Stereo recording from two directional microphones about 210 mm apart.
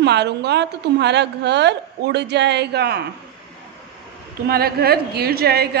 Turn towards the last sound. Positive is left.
turn(degrees=-50)  # may be behind; listen again after turning